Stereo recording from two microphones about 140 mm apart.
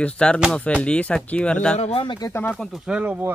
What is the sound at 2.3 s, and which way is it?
Speech, 10° left (ahead or behind).